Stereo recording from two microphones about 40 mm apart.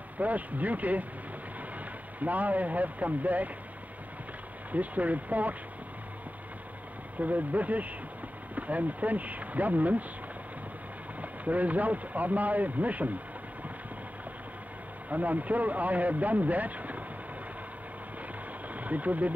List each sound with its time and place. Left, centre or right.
0.2 s speech: right
2.1 s speech: right
4.7 s speech: right
7.2 s speech: right
11.1 s speech: right
15.0 s speech: right
18.7 s speech: right